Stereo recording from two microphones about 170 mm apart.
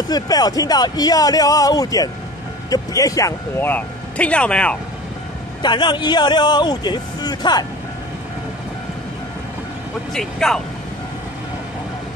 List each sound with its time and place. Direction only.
0.1 s a man's voice: 20° left (ahead or behind); by 4.7 s 5° left (ahead or behind)
5.6 s a man's voice: 25° left (ahead or behind)
10.1 s speech: 5° left (ahead or behind)